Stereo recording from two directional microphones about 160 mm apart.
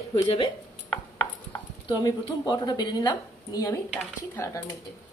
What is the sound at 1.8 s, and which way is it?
Speech, 25° left (ahead or behind).